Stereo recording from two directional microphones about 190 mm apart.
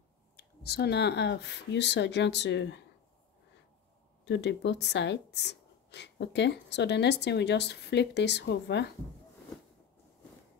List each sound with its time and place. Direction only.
0.4 s speech: 60° left (ahead or behind)
4.2 s speech: 65° left (ahead or behind)